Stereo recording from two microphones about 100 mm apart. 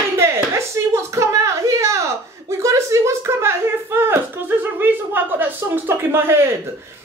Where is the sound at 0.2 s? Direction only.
25° right (ahead or behind).